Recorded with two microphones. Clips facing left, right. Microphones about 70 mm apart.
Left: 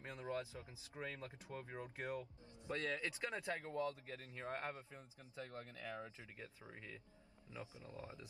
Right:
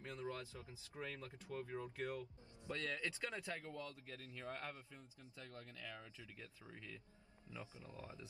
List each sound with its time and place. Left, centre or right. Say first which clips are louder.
0.0 s speech: left 2 dB; left